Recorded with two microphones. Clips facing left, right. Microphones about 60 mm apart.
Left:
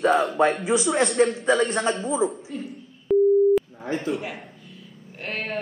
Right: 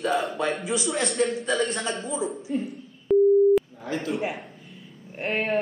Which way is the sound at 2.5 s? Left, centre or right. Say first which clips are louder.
Right 5 dB; right.